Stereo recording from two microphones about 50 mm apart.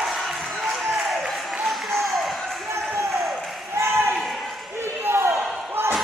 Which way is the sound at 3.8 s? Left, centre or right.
Right.